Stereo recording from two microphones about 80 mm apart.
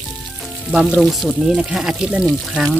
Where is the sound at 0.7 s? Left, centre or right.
Centre.